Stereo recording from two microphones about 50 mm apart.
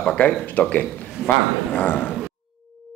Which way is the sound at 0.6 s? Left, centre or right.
Left.